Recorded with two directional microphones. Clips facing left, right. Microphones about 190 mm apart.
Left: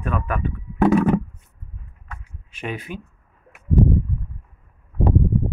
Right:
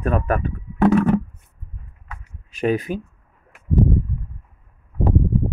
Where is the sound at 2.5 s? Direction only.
40° right (ahead or behind).